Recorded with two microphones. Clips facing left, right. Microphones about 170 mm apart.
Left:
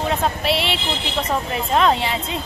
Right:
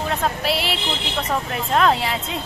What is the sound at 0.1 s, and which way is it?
Speech, centre (ahead or behind).